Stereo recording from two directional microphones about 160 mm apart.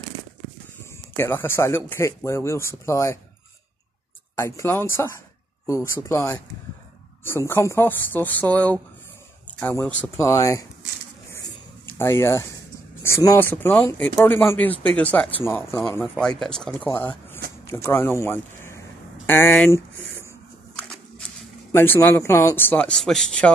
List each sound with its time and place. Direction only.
0.9 s speech: 15° left (ahead or behind)
4.4 s speech: 15° left (ahead or behind)
12.0 s speech: 15° left (ahead or behind)
21.7 s speech: 10° left (ahead or behind)